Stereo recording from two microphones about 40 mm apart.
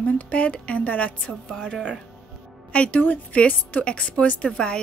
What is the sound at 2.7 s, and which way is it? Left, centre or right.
A woman's voice, left.